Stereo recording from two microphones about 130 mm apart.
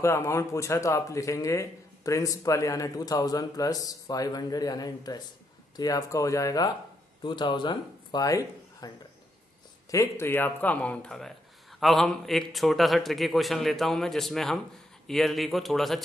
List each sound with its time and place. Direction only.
0.0 s speech: 20° left (ahead or behind)
7.2 s a man's voice: 35° left (ahead or behind); by 16.0 s centre (ahead or behind)